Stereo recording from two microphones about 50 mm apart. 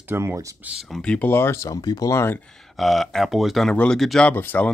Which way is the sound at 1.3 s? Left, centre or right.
Left.